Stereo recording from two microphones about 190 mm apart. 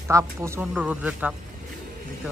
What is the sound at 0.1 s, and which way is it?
Speech, 15° right (ahead or behind).